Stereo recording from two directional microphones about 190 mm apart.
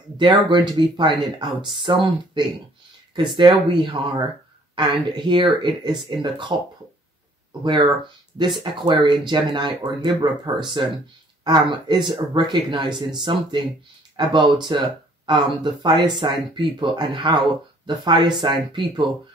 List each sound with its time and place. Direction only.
0.2 s speech: 25° right (ahead or behind)
7.6 s speech: 25° right (ahead or behind)